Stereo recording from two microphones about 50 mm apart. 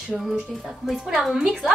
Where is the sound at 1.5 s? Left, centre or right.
Centre.